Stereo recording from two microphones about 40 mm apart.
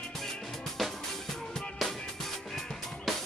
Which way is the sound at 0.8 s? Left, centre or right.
Centre.